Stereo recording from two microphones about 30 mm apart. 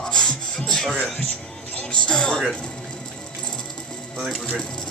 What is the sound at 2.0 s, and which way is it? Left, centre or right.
Speech, left.